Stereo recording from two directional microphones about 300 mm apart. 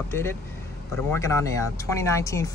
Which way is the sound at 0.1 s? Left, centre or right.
Centre.